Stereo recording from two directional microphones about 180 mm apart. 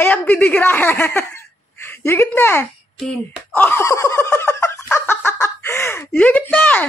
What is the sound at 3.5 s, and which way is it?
Fowl, 10° left (ahead or behind).